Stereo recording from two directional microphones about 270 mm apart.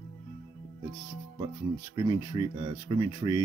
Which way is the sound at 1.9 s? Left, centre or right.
Centre.